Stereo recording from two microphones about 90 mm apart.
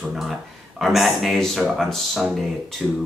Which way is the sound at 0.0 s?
5° right (ahead or behind).